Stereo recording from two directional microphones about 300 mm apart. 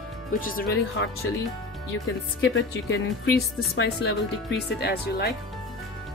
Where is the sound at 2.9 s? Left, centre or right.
Left.